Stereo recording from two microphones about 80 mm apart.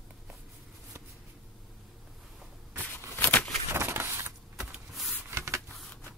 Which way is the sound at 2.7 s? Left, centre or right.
Left.